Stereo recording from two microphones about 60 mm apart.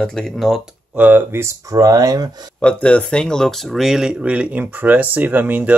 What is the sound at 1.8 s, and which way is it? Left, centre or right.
Speech, right.